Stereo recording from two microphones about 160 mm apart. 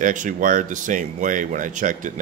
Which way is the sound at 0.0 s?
55° right (ahead or behind).